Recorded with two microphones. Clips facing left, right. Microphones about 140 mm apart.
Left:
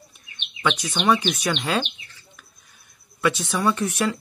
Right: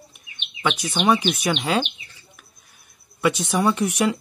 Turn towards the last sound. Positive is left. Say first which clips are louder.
# right 2 dB
turn(degrees=-15)  # may be behind; listen again after turning